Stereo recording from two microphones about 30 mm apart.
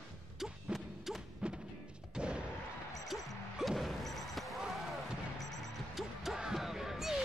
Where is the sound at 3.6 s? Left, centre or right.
Centre.